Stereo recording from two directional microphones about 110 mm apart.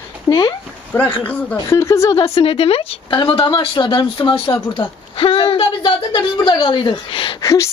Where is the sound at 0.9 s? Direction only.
20° left (ahead or behind).